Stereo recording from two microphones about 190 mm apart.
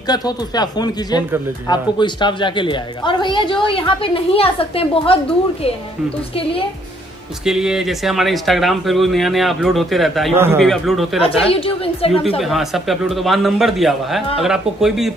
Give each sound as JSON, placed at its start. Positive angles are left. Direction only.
{"t": 0.0, "sound": "a woman's voice", "side_deg": 20}
{"t": 7.4, "sound": "speech", "side_deg": 0}
{"t": 10.3, "sound": "a man's voice", "side_deg": -10}
{"t": 10.6, "sound": "speech", "side_deg": 0}
{"t": 11.1, "sound": "a woman's voice", "side_deg": 30}
{"t": 12.4, "sound": "speech", "side_deg": 0}